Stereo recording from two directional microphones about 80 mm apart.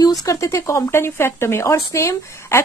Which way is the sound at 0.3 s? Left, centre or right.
Left.